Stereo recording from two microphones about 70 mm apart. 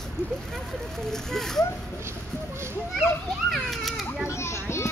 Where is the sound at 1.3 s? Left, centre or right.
Centre.